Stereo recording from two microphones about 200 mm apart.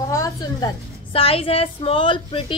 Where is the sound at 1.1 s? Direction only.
30° left (ahead or behind).